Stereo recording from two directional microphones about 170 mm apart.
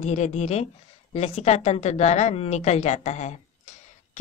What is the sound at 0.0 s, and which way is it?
Speech, 40° left (ahead or behind).